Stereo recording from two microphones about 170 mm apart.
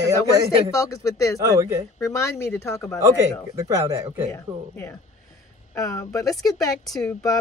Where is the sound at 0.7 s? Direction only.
20° left (ahead or behind).